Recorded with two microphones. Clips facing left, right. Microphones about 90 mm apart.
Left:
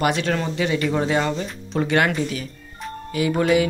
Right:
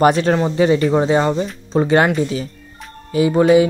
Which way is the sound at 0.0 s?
35° right (ahead or behind).